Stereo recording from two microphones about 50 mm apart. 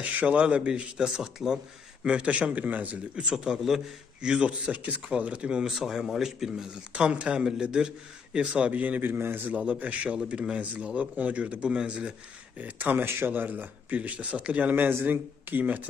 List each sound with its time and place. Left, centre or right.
0.0 s speech: right
1.0 s speech: centre
2.0 s speech: right
3.2 s speech: centre
4.2 s speech: right
5.6 s speech: centre; by 9.0 s right
9.0 s a man's voice: right
9.5 s speech: right
12.5 s speech: right
14.9 s speech: right